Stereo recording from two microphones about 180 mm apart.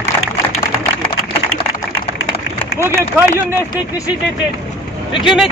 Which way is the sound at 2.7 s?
15° right (ahead or behind).